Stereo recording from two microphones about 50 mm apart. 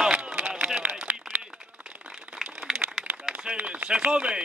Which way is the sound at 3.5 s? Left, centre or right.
Right.